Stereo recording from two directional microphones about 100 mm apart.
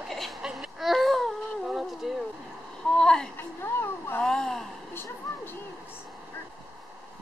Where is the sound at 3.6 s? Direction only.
20° left (ahead or behind).